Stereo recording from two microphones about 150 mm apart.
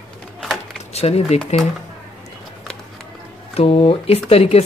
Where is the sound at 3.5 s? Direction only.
40° left (ahead or behind).